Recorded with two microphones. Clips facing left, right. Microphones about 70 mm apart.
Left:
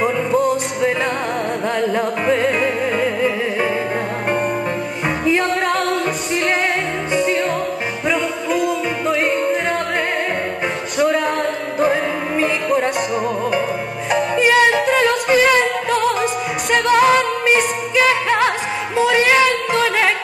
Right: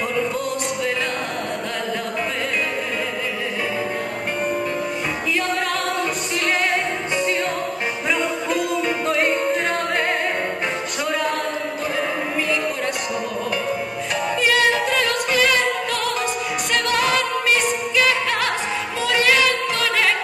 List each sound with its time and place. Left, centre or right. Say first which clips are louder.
0.3 s music: left 9 dB; centre
7.2 s music: left 5 dB; centre
11.0 s music: left 7 dB; centre
11.8 s music: left 8 dB; left
14.4 s music: left 4 dB; left
14.9 s music: left 6 dB; centre
18.0 s music: left 8 dB; left